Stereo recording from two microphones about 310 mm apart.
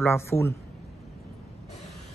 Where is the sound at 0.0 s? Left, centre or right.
Centre.